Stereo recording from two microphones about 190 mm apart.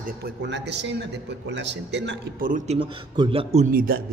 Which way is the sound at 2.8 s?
25° right (ahead or behind).